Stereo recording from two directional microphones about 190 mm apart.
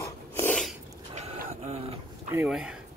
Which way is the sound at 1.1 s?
35° right (ahead or behind).